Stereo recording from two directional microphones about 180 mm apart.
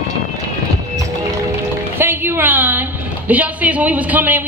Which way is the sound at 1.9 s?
10° right (ahead or behind).